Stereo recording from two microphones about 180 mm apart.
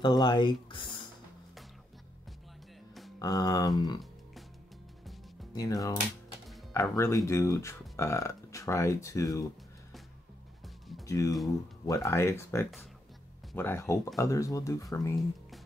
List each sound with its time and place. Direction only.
0.0 s speech: 25° left (ahead or behind)
3.2 s speech: 20° left (ahead or behind)
5.5 s speech: 20° left (ahead or behind)
11.1 s speech: 20° left (ahead or behind)